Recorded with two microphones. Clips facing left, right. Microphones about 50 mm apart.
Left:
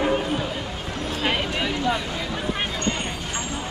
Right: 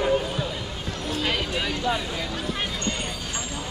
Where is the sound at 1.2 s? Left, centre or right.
Left.